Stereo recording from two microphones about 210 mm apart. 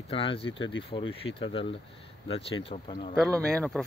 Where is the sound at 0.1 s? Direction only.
25° left (ahead or behind).